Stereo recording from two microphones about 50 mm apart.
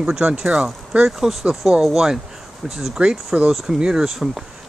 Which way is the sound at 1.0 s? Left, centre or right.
Centre.